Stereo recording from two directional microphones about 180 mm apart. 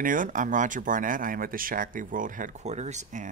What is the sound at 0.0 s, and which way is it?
Speech, 50° right (ahead or behind).